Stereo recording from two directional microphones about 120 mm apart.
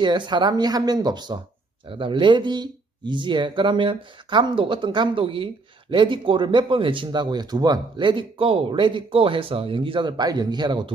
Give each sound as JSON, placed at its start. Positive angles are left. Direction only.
{"t": 0.0, "sound": "speech", "side_deg": -40}